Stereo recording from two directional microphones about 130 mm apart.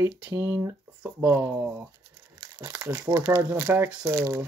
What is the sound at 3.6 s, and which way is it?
Speech, 15° right (ahead or behind).